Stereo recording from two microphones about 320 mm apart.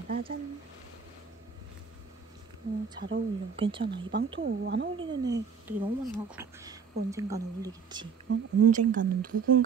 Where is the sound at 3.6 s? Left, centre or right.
Centre.